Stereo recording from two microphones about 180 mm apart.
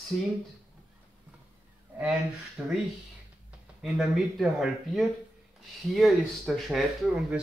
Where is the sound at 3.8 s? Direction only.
Centre (ahead or behind).